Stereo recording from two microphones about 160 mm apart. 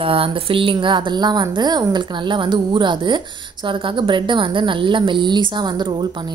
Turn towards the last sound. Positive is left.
turn(degrees=-30)  # may be behind; listen again after turning